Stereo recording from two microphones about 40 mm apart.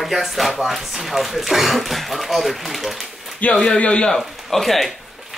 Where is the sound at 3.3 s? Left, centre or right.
Left.